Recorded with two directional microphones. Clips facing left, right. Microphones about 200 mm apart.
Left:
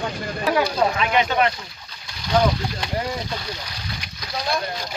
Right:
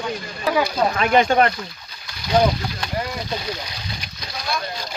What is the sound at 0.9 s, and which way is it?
Speech, 45° right (ahead or behind).